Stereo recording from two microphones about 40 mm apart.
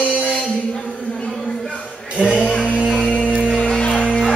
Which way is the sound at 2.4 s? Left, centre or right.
Left.